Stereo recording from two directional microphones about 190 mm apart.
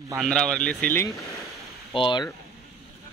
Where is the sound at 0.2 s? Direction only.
5° left (ahead or behind).